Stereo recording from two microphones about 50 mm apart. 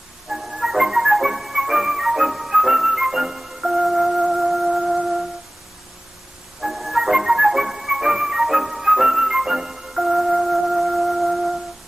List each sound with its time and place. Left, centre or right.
0.3 s music: centre
6.6 s music: centre